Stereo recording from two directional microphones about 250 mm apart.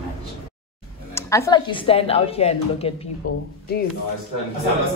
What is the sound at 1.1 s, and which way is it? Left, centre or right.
Speech, centre.